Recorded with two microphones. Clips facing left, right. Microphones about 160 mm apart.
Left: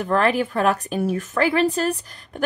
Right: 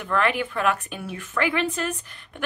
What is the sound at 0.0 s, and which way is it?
A woman's voice, 40° left (ahead or behind).